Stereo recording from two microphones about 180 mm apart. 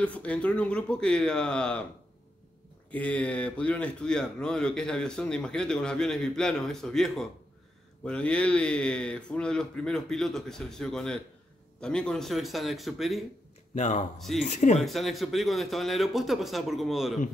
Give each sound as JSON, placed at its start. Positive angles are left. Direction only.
{"t": 0.0, "sound": "speech", "side_deg": 10}
{"t": 2.9, "sound": "speech", "side_deg": 5}
{"t": 13.7, "sound": "speech", "side_deg": 40}
{"t": 14.8, "sound": "speech", "side_deg": 0}